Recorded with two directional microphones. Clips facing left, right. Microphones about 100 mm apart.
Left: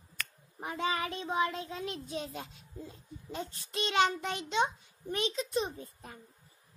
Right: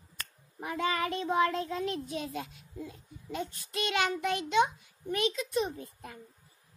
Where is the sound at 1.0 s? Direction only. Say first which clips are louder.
Right 4 dB; 45° right (ahead or behind).